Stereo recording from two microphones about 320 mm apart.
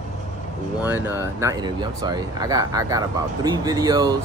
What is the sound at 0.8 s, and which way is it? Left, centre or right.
Speech, centre.